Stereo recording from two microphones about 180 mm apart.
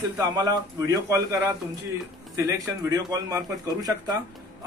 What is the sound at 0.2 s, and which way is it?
Speech, 20° right (ahead or behind).